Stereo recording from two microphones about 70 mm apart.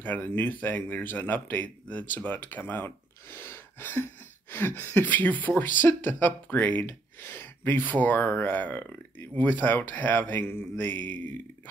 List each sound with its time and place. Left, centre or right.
0.0 s speech: left